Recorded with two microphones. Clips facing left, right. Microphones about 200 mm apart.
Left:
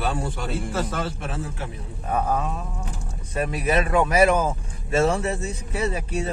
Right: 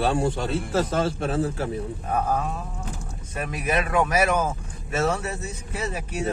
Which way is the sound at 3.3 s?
30° left (ahead or behind).